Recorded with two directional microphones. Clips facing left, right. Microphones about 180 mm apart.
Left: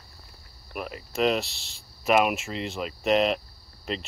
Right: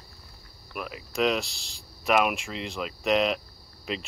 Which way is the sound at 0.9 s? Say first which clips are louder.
Left 1 dB; centre (ahead or behind).